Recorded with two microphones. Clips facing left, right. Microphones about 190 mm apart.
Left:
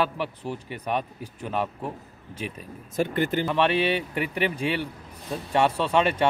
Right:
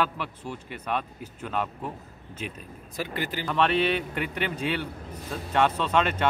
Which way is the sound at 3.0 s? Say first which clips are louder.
Left 7 dB; 50° left (ahead or behind).